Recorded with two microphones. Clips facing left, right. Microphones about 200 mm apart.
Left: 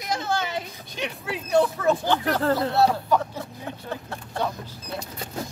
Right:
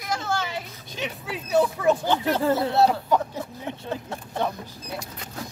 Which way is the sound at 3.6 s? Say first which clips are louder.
Right 3 dB; 20° right (ahead or behind).